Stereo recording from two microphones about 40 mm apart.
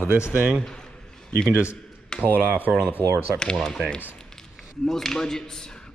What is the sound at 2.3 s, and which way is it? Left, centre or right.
Speech, right.